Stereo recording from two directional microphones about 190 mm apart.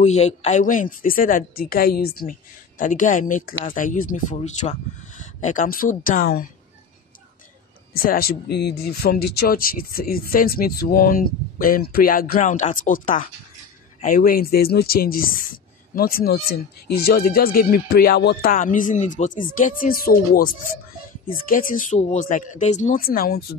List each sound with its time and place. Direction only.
0.0 s speech: 35° left (ahead or behind)
7.9 s speech: 50° left (ahead or behind)